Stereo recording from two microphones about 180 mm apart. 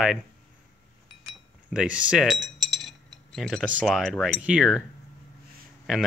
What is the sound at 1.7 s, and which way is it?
Cutlery, 5° right (ahead or behind).